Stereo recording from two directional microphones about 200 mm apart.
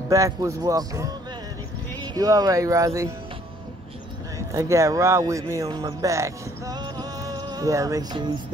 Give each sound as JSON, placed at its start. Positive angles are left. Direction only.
{"t": 0.1, "sound": "speech", "side_deg": -15}
{"t": 2.1, "sound": "speech", "side_deg": -20}
{"t": 4.4, "sound": "speech", "side_deg": -15}